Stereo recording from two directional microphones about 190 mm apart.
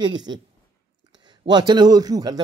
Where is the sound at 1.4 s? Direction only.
20° right (ahead or behind).